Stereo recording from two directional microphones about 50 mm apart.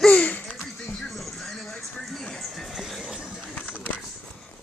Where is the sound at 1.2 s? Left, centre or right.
Centre.